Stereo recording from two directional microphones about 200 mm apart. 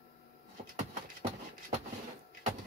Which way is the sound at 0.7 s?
35° right (ahead or behind).